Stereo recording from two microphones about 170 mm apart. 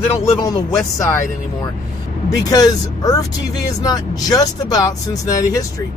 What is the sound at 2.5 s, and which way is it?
Speech, 20° left (ahead or behind).